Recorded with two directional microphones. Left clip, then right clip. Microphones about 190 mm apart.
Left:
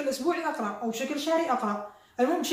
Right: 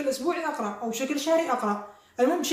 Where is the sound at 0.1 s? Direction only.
20° right (ahead or behind).